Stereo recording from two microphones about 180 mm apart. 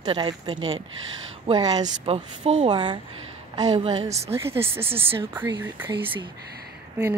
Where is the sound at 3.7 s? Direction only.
35° right (ahead or behind).